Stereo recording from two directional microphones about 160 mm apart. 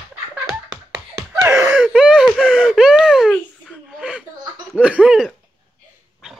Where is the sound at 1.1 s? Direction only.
15° right (ahead or behind).